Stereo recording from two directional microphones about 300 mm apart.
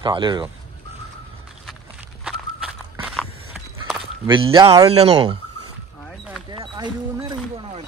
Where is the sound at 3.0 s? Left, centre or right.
Centre.